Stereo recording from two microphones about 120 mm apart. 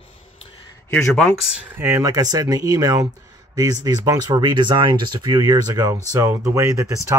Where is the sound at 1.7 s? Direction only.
20° right (ahead or behind).